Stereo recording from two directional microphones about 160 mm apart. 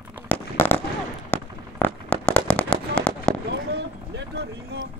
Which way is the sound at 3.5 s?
90° right.